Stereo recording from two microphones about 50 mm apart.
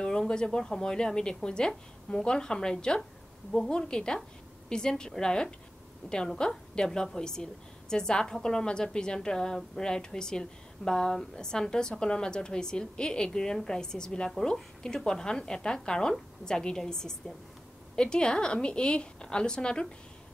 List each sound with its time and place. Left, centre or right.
0.3 s a woman's voice: centre